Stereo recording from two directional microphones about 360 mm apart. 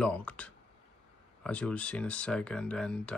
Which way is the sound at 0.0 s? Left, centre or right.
Centre.